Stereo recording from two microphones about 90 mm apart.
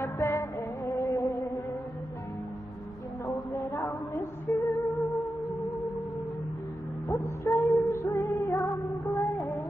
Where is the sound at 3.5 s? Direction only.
30° left (ahead or behind).